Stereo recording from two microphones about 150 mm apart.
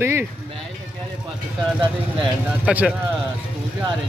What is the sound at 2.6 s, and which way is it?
Speech, 10° right (ahead or behind).